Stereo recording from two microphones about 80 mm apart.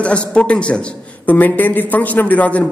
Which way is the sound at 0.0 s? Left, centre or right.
Centre.